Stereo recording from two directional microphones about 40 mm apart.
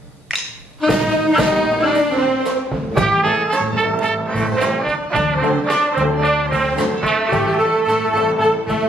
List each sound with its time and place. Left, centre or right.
0.8 s music: centre
3.0 s music: centre
3.5 s brass instrument: centre
5.7 s music: centre
7.3 s music: centre